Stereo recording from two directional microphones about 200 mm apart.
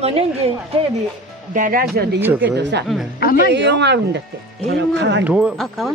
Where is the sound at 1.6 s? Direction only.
45° right (ahead or behind).